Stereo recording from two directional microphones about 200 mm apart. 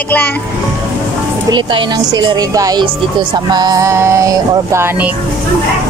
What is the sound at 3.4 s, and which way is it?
Music, 20° right (ahead or behind).